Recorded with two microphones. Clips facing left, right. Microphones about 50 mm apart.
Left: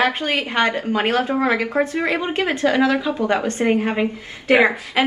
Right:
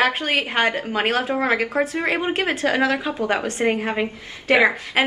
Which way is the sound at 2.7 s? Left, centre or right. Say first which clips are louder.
Left 4 dB; right.